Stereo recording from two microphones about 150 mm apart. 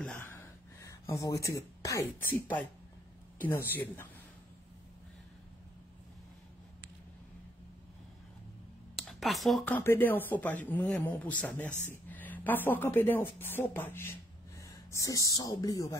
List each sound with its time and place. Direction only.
0.0 s gasp: 10° left (ahead or behind)
1.3 s speech: 20° left (ahead or behind)
8.9 s a sound: centre (ahead or behind)
9.7 s speech: 15° left (ahead or behind)
11.7 s speech: 15° right (ahead or behind)
12.1 s speech: 10° left (ahead or behind)